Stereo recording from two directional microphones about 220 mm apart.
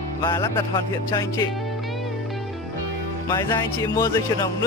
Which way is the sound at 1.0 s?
15° left (ahead or behind).